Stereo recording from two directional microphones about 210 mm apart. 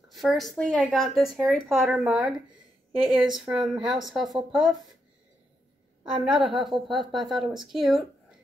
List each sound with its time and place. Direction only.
0.1 s speech: centre (ahead or behind)
3.0 s a woman's voice: 25° right (ahead or behind)
3.3 s speech: centre (ahead or behind)
6.2 s speech: centre (ahead or behind)